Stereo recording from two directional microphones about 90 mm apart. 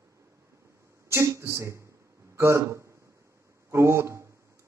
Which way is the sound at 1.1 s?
30° right (ahead or behind).